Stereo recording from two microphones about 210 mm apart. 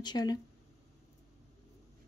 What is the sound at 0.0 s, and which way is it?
Speech, 20° left (ahead or behind).